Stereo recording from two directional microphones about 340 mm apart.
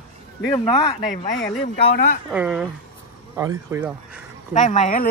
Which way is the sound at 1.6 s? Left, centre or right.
Left.